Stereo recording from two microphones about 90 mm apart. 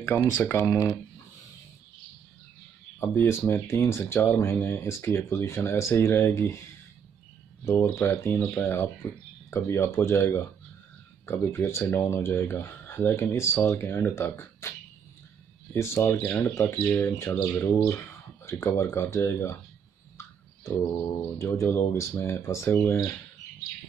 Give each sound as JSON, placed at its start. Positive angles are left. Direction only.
{"t": 0.4, "sound": "speech", "side_deg": 30}
{"t": 3.0, "sound": "speech", "side_deg": 25}
{"t": 7.6, "sound": "speech", "side_deg": 25}
{"t": 11.2, "sound": "speech", "side_deg": 30}
{"t": 15.7, "sound": "speech", "side_deg": 25}
{"t": 20.2, "sound": "a sound", "side_deg": 30}
{"t": 21.4, "sound": "speech", "side_deg": 30}